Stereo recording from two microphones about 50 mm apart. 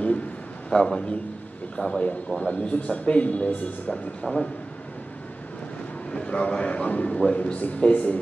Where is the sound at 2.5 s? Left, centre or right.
Left.